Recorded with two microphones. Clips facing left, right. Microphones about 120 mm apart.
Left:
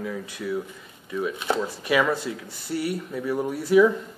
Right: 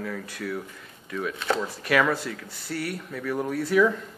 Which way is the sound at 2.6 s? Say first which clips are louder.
Left 4 dB; 25° left (ahead or behind).